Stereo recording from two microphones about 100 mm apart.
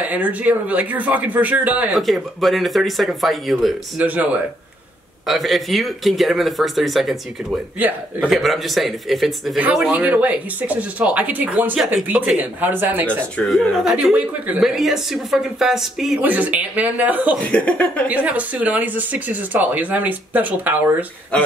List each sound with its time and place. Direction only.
0.0 s speech: 15° right (ahead or behind)
1.9 s speech: centre (ahead or behind)
4.0 s speech: 15° right (ahead or behind)
5.2 s speech: centre (ahead or behind)
8.3 s speech: centre (ahead or behind)
9.6 s speech: 15° right (ahead or behind)
12.4 s speech: 20° right (ahead or behind)
13.5 s speech: 5° right (ahead or behind)
16.2 s speech: 15° right (ahead or behind)
17.5 s speech: 10° left (ahead or behind)
18.0 s speech: 15° right (ahead or behind)